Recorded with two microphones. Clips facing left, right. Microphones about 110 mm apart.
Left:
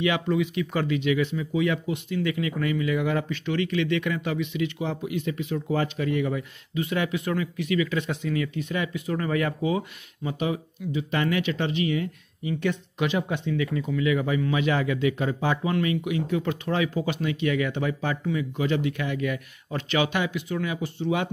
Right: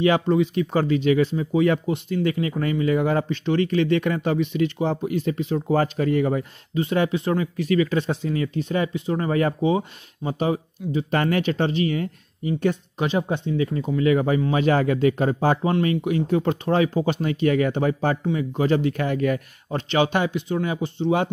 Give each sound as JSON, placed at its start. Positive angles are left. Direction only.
{"t": 0.0, "sound": "speech", "side_deg": -35}